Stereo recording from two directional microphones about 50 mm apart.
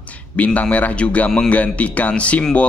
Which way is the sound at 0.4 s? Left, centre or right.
Left.